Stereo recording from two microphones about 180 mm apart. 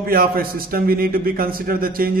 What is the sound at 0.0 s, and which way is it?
A man's voice, 55° right (ahead or behind).